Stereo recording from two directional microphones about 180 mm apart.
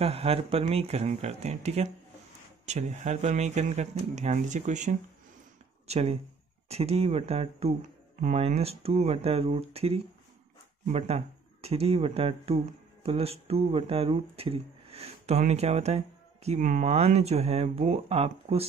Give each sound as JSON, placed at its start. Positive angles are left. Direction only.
{"t": 0.0, "sound": "speech", "side_deg": -35}